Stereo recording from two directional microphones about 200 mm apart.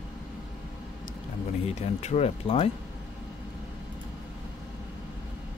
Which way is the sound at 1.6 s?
30° left (ahead or behind).